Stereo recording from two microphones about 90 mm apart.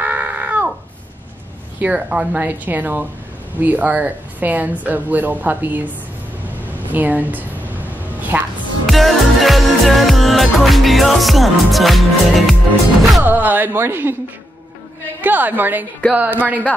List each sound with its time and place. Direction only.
0.0 s a sound: 20° right (ahead or behind)
1.8 s a woman's voice: 15° right (ahead or behind)
8.8 s music: centre (ahead or behind)
13.2 s speech: 20° right (ahead or behind)
15.2 s speech: 20° right (ahead or behind)